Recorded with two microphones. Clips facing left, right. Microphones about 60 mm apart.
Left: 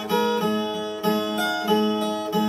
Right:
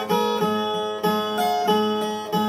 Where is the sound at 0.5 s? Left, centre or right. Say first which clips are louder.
Right 1 dB; right.